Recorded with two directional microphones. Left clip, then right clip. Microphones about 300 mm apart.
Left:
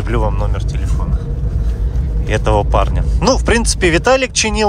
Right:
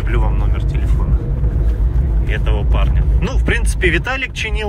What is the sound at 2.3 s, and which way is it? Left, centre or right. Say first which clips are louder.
Speech: left 11 dB; centre.